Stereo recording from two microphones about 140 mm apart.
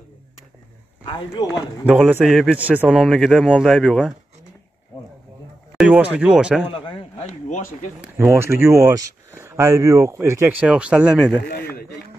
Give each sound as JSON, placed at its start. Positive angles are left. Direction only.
{"t": 1.3, "sound": "speech", "side_deg": 25}
{"t": 1.9, "sound": "speech", "side_deg": -10}
{"t": 5.8, "sound": "speech", "side_deg": -10}
{"t": 6.7, "sound": "a man's voice", "side_deg": 35}
{"t": 7.2, "sound": "speech", "side_deg": 60}
{"t": 8.1, "sound": "speech", "side_deg": -15}
{"t": 11.5, "sound": "a sound", "side_deg": 90}